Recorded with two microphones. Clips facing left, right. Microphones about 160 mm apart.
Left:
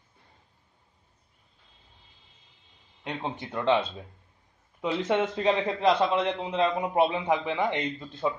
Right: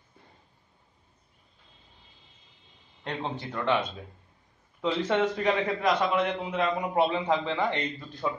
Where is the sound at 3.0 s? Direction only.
15° left (ahead or behind).